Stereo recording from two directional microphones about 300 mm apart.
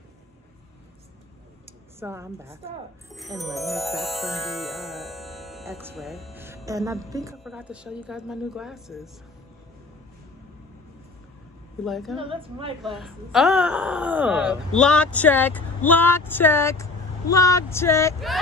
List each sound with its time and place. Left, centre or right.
1.7 s a woman's voice: centre
3.1 s music: centre
7.3 s speech: centre
11.8 s speech: centre
12.2 s a woman's voice: centre
12.8 s speech: centre